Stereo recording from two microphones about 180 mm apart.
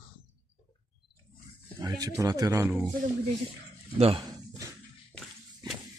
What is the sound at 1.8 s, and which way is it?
Speech, 20° right (ahead or behind).